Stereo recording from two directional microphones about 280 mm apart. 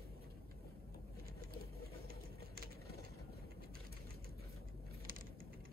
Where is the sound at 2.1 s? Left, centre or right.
Right.